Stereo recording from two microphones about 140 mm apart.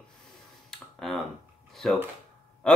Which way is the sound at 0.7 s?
Centre (ahead or behind).